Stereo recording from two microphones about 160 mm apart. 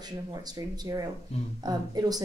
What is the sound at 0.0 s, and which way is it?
Speech, 25° right (ahead or behind).